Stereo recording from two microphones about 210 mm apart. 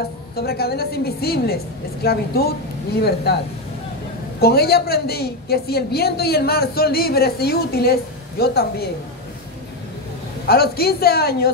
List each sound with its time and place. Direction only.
0.4 s a woman's voice: 50° left (ahead or behind)
4.4 s a woman's voice: 50° left (ahead or behind)
10.4 s a woman's voice: 45° left (ahead or behind)